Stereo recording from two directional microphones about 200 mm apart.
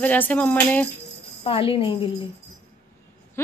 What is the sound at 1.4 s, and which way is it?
Speech, 30° left (ahead or behind).